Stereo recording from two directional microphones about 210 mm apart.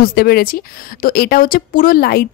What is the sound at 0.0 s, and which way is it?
A woman's voice, 45° left (ahead or behind).